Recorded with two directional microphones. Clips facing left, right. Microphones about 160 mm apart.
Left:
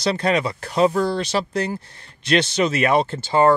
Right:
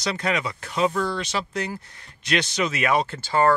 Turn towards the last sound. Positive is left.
turn(degrees=25)  # may be behind; listen again after turning